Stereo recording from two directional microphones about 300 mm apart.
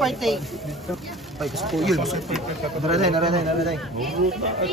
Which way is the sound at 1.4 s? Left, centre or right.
Centre.